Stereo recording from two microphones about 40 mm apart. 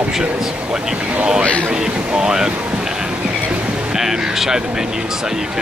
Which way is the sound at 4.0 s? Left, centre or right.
Centre.